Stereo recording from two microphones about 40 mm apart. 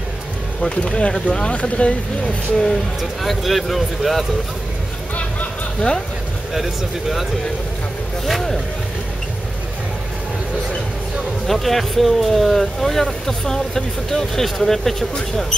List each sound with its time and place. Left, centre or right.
0.6 s speech: centre
2.2 s speech: centre
3.3 s speech: centre
6.5 s speech: centre
8.3 s speech: centre
11.4 s speech: centre